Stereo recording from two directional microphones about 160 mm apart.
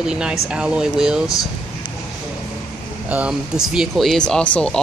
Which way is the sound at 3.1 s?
5° right (ahead or behind).